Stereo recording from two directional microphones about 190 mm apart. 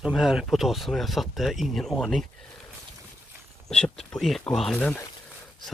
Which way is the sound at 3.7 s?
5° left (ahead or behind).